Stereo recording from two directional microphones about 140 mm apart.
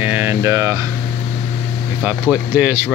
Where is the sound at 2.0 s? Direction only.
10° right (ahead or behind).